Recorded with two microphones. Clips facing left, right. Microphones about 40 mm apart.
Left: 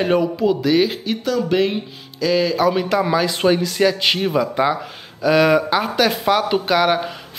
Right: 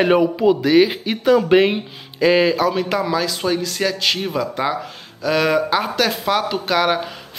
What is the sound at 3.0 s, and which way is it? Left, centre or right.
Speech, centre.